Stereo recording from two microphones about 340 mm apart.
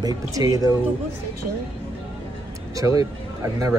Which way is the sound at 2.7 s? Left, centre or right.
Centre.